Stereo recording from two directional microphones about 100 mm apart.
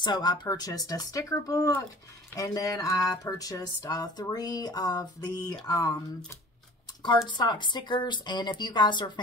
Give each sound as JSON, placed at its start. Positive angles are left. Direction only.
{"t": 0.0, "sound": "speech", "side_deg": 45}
{"t": 7.2, "sound": "a woman's voice", "side_deg": 50}